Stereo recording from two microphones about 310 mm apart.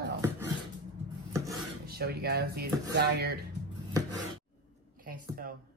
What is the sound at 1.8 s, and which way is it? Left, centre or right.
Speech, right.